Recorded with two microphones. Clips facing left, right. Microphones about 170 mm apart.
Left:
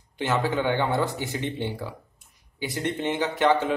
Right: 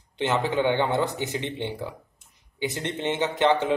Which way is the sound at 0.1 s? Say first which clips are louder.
Right 1 dB; 20° right (ahead or behind).